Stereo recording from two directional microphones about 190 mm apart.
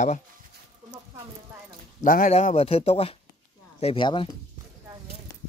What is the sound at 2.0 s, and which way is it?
Speech, 45° left (ahead or behind).